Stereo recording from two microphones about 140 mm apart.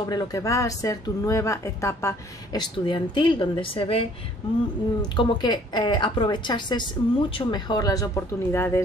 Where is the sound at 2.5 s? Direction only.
35° left (ahead or behind).